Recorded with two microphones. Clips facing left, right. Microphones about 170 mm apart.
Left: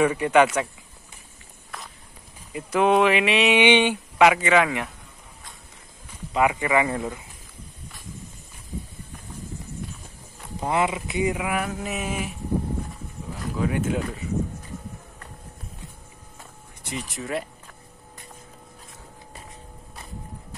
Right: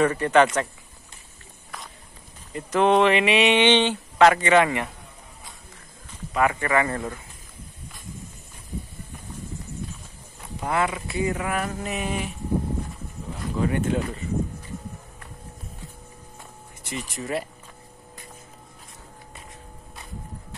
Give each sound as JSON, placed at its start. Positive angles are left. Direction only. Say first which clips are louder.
{"t": 0.0, "sound": "speech", "louder": "even", "side_deg": 10}
{"t": 1.7, "sound": "walk", "louder": "even", "side_deg": 0}
{"t": 2.5, "sound": "speech", "louder": "even", "side_deg": 10}
{"t": 6.3, "sound": "speech", "louder": "left 1 dB", "side_deg": 15}
{"t": 10.6, "sound": "speech", "louder": "left 1 dB", "side_deg": 20}
{"t": 13.6, "sound": "speech", "louder": "right 1 dB", "side_deg": 5}
{"t": 16.8, "sound": "speech", "louder": "even", "side_deg": 0}